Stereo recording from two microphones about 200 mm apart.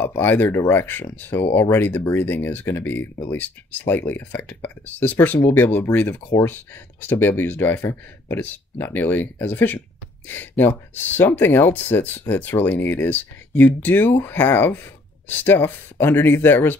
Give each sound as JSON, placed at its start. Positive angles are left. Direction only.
{"t": 0.0, "sound": "speech", "side_deg": 10}